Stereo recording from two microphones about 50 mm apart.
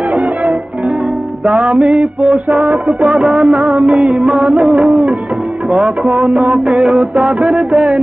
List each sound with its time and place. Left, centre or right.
1.4 s music: right